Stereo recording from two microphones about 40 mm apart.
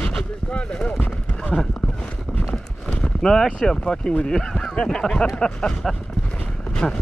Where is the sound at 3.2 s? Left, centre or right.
Centre.